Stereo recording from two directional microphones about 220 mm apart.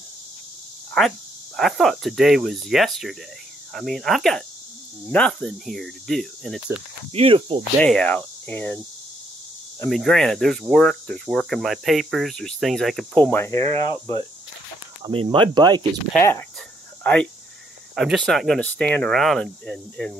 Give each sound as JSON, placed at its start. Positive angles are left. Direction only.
{"t": 1.6, "sound": "cricket", "side_deg": 0}
{"t": 7.1, "sound": "speech", "side_deg": -25}
{"t": 7.8, "sound": "cricket", "side_deg": 5}
{"t": 15.0, "sound": "speech", "side_deg": -25}
{"t": 16.2, "sound": "cricket", "side_deg": 10}
{"t": 17.0, "sound": "speech", "side_deg": 5}
{"t": 17.9, "sound": "cricket", "side_deg": 0}